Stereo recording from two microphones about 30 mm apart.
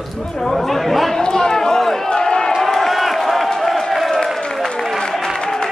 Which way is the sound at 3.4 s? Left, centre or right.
Centre.